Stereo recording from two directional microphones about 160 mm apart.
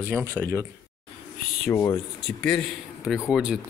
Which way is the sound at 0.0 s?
15° right (ahead or behind).